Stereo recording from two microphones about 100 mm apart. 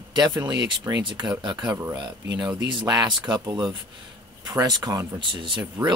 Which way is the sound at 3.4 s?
35° right (ahead or behind).